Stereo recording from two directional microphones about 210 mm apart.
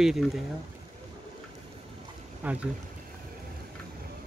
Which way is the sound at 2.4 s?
10° right (ahead or behind).